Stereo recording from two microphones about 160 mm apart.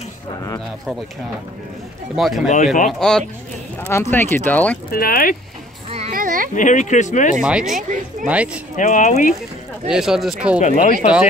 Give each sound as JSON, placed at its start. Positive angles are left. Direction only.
{"t": 2.1, "sound": "speech", "side_deg": 0}
{"t": 2.4, "sound": "speech", "side_deg": 50}
{"t": 2.9, "sound": "speech", "side_deg": 5}
{"t": 3.9, "sound": "speech", "side_deg": 15}
{"t": 4.9, "sound": "speech", "side_deg": 65}
{"t": 5.9, "sound": "a sound", "side_deg": -40}
{"t": 6.1, "sound": "a sound", "side_deg": -60}
{"t": 6.5, "sound": "speech", "side_deg": 50}
{"t": 7.3, "sound": "speech", "side_deg": -5}
{"t": 8.7, "sound": "speech", "side_deg": 50}
{"t": 9.8, "sound": "speech", "side_deg": -5}
{"t": 10.6, "sound": "speech", "side_deg": 55}